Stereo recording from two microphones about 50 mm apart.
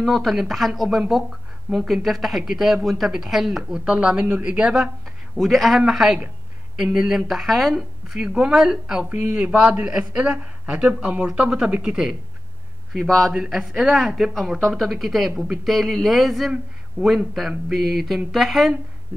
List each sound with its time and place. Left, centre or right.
0.0 s speech: centre
3.7 s speech: right
5.4 s a woman's voice: centre
7.2 s speech: centre
8.1 s a woman's voice: centre
9.3 s speech: right
13.0 s a man's voice: centre
13.6 s a woman's voice: centre
17.0 s speech: right
17.4 s speech: centre